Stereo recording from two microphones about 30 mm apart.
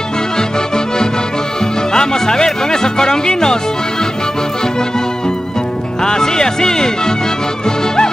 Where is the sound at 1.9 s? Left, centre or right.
Centre.